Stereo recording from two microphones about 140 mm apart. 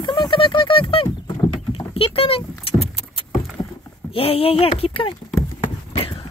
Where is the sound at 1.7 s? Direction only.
40° left (ahead or behind).